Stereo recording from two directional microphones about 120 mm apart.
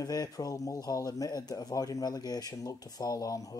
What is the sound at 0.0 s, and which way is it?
Speech, 30° left (ahead or behind).